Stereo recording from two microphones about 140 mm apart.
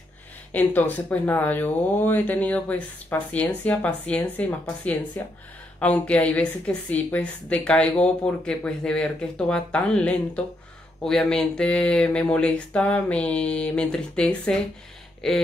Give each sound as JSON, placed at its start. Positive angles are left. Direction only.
{"t": 0.5, "sound": "a woman's voice", "side_deg": 10}